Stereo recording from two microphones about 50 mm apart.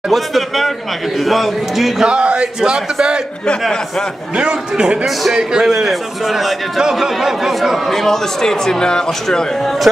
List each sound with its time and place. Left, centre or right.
0.1 s a man's voice: centre
2.0 s speech: centre
4.4 s speech: centre
5.0 s a man's voice: centre
7.9 s speech: centre